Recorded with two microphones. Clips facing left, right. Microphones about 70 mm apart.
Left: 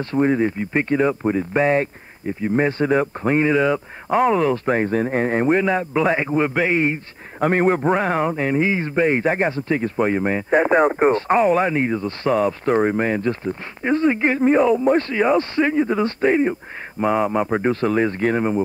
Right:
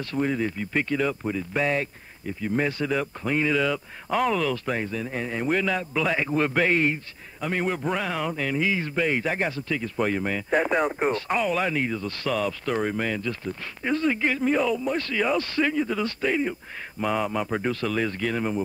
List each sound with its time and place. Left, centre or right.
0.0 s speech: left
5.5 s a man's voice: left
7.3 s speech: left